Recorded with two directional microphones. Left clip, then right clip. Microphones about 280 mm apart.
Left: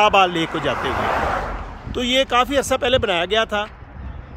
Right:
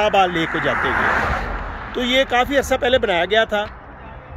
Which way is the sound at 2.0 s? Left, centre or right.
Centre.